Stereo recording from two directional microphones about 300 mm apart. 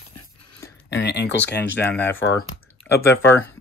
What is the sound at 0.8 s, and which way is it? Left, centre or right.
Speech, left.